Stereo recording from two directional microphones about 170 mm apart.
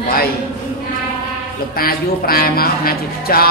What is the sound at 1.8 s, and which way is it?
Speech, 60° left (ahead or behind).